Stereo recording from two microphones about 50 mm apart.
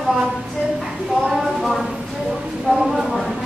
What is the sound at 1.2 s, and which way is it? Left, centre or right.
A woman's voice, centre.